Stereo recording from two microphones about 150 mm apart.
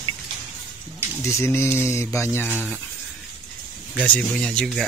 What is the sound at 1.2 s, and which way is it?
Speech, 20° left (ahead or behind).